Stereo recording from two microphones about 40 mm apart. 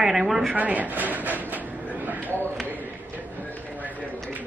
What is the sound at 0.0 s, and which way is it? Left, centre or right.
Speech, centre.